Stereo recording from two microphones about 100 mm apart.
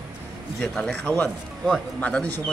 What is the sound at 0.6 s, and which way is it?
Speech, 10° left (ahead or behind).